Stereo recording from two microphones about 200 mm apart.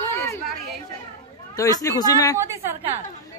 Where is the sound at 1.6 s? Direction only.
15° left (ahead or behind).